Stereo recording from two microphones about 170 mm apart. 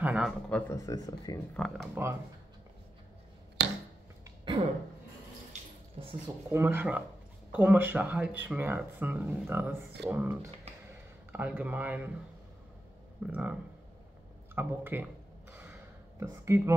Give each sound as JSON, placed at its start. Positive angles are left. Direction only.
{"t": 0.0, "sound": "speech", "side_deg": 0}
{"t": 0.6, "sound": "speech", "side_deg": 15}
{"t": 2.0, "sound": "speech", "side_deg": -15}
{"t": 3.6, "sound": "a sound", "side_deg": -85}
{"t": 5.5, "sound": "a sound", "side_deg": -30}
{"t": 6.5, "sound": "speech", "side_deg": -15}
{"t": 13.3, "sound": "speech", "side_deg": -5}
{"t": 16.2, "sound": "speech", "side_deg": -15}